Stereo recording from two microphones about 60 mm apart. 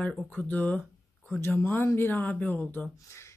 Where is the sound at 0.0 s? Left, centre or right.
Left.